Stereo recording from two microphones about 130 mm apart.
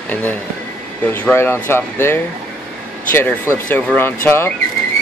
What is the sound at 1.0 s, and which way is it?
Speech, 15° left (ahead or behind).